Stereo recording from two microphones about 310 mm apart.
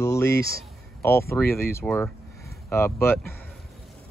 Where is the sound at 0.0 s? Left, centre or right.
Centre.